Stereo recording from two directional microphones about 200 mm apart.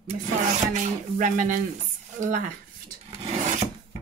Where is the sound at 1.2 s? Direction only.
40° right (ahead or behind).